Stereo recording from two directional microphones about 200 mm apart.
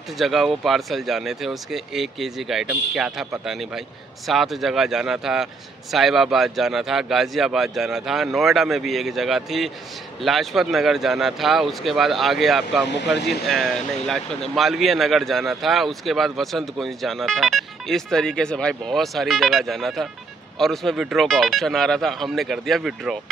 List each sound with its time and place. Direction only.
0.2 s a man's voice: centre (ahead or behind)